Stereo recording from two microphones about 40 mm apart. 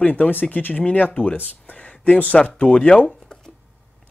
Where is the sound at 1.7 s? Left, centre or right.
Left.